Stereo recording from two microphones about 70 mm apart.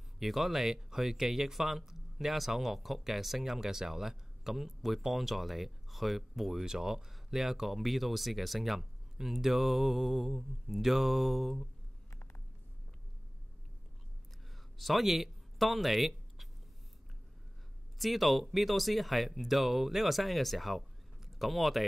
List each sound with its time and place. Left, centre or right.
0.2 s speech: centre
12.1 s a sound: left
14.8 s speech: centre
17.9 s speech: centre